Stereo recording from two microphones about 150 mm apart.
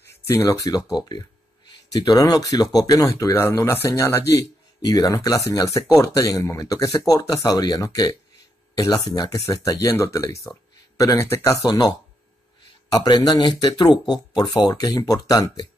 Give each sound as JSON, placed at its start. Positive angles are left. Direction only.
{"t": 0.0, "sound": "speech", "side_deg": 20}
{"t": 12.9, "sound": "speech", "side_deg": 25}